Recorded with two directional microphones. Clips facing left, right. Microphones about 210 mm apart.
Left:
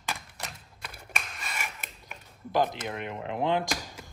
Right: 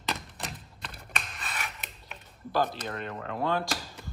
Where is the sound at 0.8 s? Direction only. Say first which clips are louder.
Left 1 dB; 10° left (ahead or behind).